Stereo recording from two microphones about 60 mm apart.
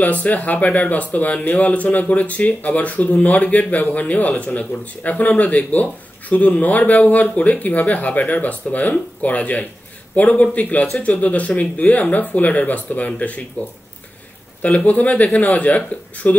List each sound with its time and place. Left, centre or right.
0.0 s speech: left
14.6 s speech: left